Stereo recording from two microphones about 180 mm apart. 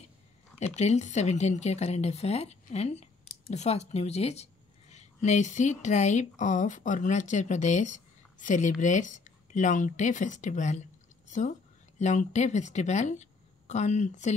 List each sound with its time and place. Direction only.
0.6 s a woman's voice: 40° left (ahead or behind)